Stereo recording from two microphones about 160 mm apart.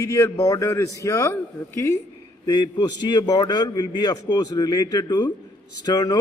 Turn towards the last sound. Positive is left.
turn(degrees=25)  # may be behind; listen again after turning